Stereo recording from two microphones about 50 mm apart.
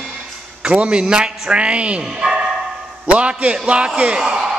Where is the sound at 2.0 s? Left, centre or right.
Centre.